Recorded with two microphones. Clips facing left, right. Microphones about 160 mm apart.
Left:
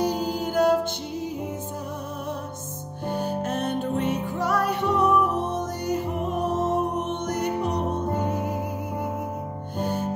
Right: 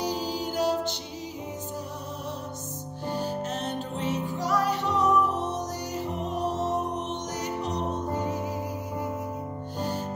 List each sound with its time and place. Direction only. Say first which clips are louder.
0.0 s music: left 5 dB; 55° left (ahead or behind)
3.1 s music: left 3 dB; 55° left (ahead or behind)
9.8 s music: left 4 dB; 55° left (ahead or behind)